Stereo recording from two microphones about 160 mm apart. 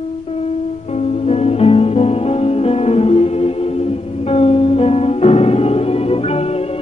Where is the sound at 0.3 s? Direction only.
40° left (ahead or behind).